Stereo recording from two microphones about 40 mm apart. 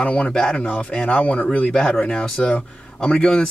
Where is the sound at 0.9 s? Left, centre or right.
Left.